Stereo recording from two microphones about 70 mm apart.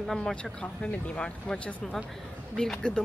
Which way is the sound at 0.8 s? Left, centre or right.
Centre.